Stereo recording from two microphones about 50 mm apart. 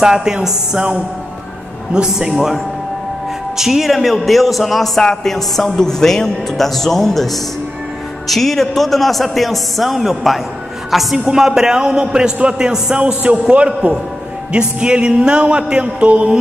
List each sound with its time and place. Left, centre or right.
0.0 s a man's voice: centre
1.9 s a man's voice: centre
13.0 s music: right